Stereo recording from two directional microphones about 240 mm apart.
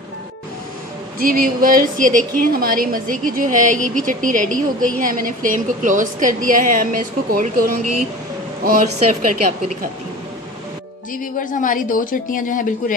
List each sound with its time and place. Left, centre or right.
1.2 s a woman's voice: right
7.8 s speech: right
8.6 s a woman's voice: right
11.3 s speech: left